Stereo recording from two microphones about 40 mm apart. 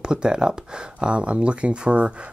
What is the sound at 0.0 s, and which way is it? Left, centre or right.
Speech, right.